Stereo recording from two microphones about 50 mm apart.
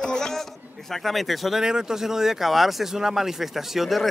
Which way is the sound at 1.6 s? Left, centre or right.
Centre.